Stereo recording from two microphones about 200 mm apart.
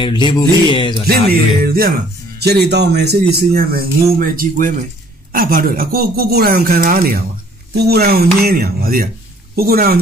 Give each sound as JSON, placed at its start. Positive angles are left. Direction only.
{"t": 0.0, "sound": "music", "side_deg": 25}
{"t": 1.0, "sound": "speech", "side_deg": -50}